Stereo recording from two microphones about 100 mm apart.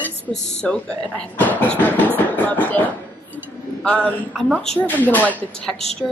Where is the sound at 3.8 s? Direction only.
15° left (ahead or behind).